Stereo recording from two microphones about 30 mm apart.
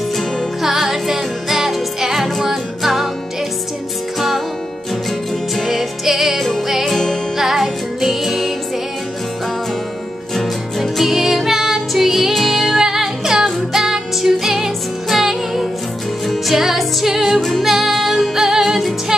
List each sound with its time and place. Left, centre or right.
0.6 s music: centre
5.6 s music: centre
6.9 s music: centre
7.3 s music: centre
10.3 s music: centre
12.3 s music: centre
12.7 s music: centre
17.0 s music: centre
17.4 s music: centre
18.4 s music: centre